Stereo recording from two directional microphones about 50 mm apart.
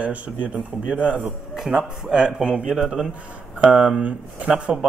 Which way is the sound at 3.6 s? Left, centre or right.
Right.